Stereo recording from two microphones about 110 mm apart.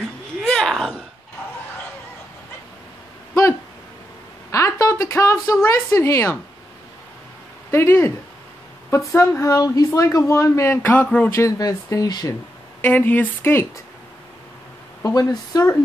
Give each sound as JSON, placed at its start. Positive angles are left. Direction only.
{"t": 0.4, "sound": "a sound", "side_deg": 5}
{"t": 4.5, "sound": "a sound", "side_deg": 30}
{"t": 7.7, "sound": "speech", "side_deg": 25}
{"t": 11.3, "sound": "speech", "side_deg": 30}
{"t": 12.8, "sound": "a woman's voice", "side_deg": 15}
{"t": 15.0, "sound": "speech", "side_deg": 30}